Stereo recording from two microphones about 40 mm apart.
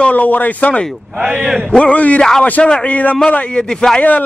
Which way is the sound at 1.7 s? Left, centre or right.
Left.